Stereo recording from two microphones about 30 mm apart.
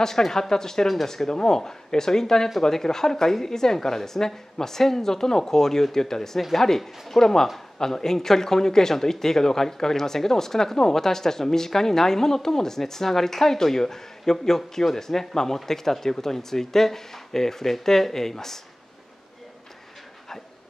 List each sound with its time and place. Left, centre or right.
0.0 s speech: centre